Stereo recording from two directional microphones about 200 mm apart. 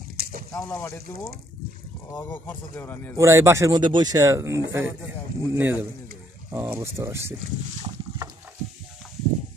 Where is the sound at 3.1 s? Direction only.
15° right (ahead or behind).